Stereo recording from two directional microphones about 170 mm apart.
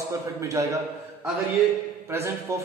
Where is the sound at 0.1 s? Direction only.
20° right (ahead or behind).